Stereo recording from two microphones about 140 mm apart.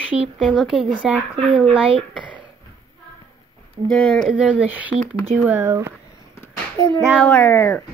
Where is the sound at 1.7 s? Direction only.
40° right (ahead or behind).